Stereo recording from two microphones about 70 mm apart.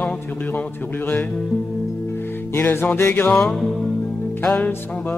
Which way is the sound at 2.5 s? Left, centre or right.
Left.